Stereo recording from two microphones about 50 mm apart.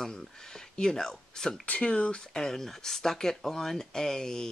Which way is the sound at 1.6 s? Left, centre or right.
Left.